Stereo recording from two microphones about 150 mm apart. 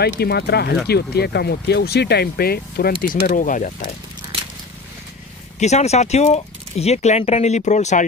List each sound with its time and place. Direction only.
0.0 s speech: 90° left; by 3.9 s 60° left (ahead or behind)
5.6 s speech: 50° left (ahead or behind)